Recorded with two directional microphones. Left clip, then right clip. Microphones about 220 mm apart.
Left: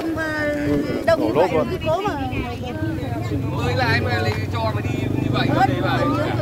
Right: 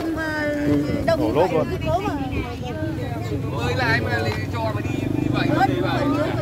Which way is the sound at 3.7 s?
30° left (ahead or behind).